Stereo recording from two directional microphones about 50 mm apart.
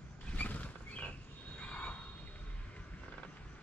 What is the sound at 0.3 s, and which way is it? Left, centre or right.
Wild animals, left.